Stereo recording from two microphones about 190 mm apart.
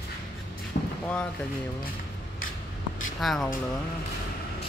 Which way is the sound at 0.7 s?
50° left (ahead or behind).